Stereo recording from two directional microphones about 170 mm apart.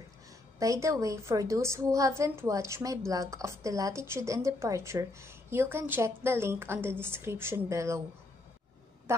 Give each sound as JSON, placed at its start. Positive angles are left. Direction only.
{"t": 0.6, "sound": "a woman's voice", "side_deg": -20}